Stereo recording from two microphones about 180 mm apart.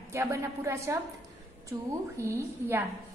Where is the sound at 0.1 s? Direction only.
15° right (ahead or behind).